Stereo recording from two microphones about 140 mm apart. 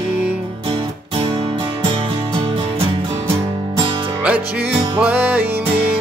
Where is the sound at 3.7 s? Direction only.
35° right (ahead or behind).